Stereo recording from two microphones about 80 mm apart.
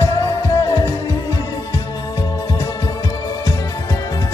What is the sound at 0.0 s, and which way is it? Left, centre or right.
Music, left.